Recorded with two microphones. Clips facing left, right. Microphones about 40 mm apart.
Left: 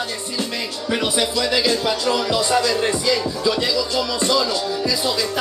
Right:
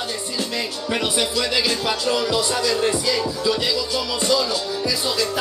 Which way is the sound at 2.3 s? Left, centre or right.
Left.